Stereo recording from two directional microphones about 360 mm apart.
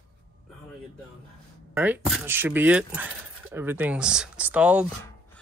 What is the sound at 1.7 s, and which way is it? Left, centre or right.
Speech, centre.